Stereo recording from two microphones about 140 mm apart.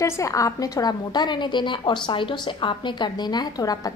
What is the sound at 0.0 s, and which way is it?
A woman's voice, 20° left (ahead or behind).